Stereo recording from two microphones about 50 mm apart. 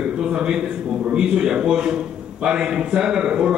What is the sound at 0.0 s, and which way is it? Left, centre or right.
A man's voice, centre.